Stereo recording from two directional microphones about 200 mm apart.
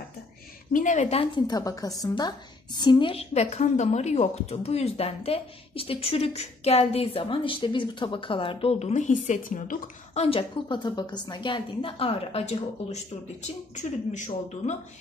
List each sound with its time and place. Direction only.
0.7 s a woman's voice: 40° left (ahead or behind)